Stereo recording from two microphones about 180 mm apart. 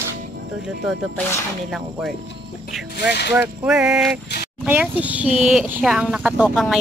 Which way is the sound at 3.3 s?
10° right (ahead or behind).